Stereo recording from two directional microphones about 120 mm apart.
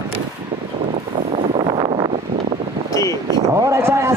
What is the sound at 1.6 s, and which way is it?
Vehicle, 40° right (ahead or behind).